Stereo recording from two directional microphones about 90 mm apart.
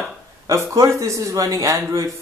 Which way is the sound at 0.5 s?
35° right (ahead or behind).